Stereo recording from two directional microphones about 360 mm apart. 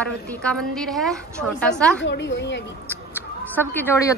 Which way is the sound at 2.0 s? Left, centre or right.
Left.